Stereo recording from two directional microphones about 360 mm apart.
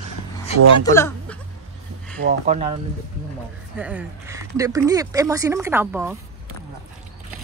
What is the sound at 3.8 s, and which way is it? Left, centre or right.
Speech, centre.